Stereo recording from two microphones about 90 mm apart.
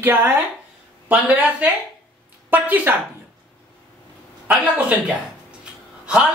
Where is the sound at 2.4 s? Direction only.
20° right (ahead or behind).